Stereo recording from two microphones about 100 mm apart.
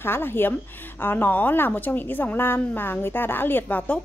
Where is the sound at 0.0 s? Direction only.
20° left (ahead or behind).